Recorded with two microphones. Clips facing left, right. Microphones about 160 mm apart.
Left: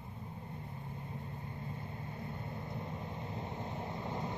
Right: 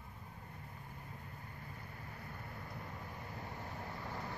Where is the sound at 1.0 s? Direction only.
25° left (ahead or behind).